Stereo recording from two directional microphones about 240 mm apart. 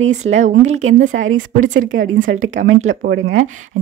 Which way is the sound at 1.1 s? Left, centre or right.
Right.